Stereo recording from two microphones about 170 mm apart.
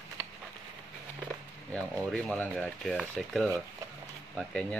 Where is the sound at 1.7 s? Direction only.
5° left (ahead or behind).